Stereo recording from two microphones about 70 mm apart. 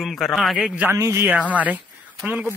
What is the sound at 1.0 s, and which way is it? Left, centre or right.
Speech, right.